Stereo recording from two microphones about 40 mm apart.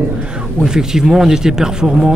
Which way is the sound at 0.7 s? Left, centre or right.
Centre.